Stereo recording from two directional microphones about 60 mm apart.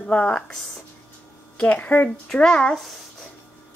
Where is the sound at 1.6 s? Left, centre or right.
Left.